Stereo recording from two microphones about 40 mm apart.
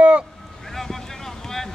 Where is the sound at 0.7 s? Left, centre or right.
Centre.